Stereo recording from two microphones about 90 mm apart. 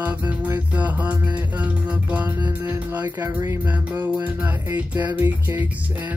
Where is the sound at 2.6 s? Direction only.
20° right (ahead or behind).